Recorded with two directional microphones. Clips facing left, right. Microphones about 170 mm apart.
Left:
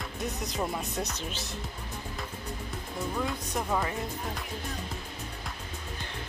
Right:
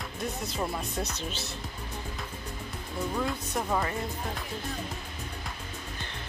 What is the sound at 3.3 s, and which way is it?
Speech, centre (ahead or behind).